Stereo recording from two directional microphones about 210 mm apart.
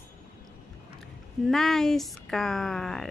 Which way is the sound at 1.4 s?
Centre (ahead or behind).